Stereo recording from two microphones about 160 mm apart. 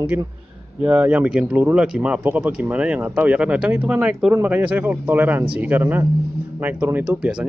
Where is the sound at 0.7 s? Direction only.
10° right (ahead or behind).